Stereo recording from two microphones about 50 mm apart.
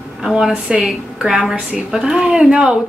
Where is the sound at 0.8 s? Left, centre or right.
Centre.